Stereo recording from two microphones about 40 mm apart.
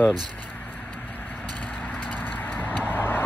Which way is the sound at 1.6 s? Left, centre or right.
Left.